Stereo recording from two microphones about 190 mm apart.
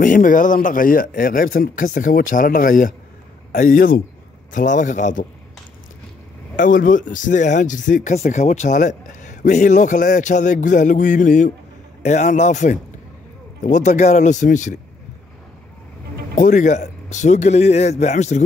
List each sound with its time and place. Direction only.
0.0 s speech: 45° left (ahead or behind)
6.5 s speech: 45° left (ahead or behind)
16.3 s speech: 45° left (ahead or behind)